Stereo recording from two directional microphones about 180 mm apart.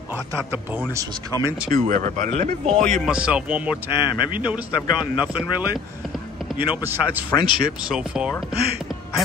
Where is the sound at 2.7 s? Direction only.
5° left (ahead or behind).